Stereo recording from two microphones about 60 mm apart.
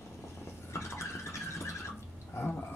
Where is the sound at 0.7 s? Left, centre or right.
Left.